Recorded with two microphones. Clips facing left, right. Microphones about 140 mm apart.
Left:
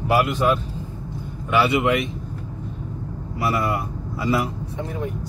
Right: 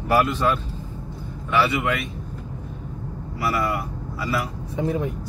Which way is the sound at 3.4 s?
25° left (ahead or behind).